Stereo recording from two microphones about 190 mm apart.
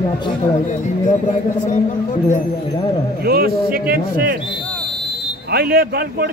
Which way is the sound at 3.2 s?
55° right (ahead or behind).